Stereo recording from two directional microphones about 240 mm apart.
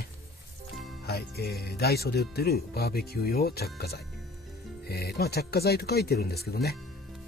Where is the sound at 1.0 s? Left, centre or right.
Left.